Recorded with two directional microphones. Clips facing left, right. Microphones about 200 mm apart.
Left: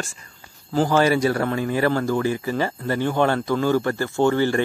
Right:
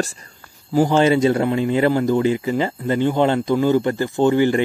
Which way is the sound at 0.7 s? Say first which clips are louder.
Right 3 dB; 20° right (ahead or behind).